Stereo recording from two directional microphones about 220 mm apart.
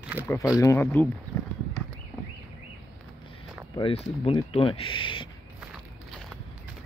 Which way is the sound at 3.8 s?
25° left (ahead or behind).